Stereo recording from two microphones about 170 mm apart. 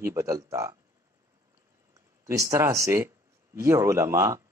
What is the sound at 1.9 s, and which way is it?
A man's voice, 20° right (ahead or behind).